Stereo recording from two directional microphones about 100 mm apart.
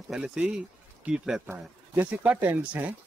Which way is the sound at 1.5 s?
20° right (ahead or behind).